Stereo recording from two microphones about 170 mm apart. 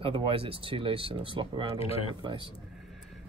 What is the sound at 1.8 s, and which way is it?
Speech, 35° left (ahead or behind).